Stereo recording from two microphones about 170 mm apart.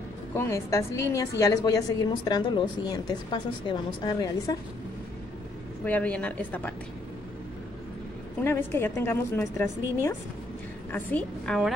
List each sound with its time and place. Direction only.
0.3 s a woman's voice: 15° left (ahead or behind)
5.9 s a woman's voice: 10° left (ahead or behind)
8.5 s a woman's voice: 10° left (ahead or behind)
10.9 s a woman's voice: 10° left (ahead or behind)